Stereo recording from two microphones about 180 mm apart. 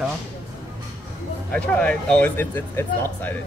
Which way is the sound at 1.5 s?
10° left (ahead or behind).